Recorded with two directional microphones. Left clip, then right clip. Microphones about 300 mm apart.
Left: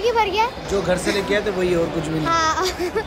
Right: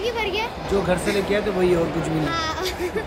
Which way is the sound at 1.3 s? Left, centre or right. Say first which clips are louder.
Right 1 dB; centre.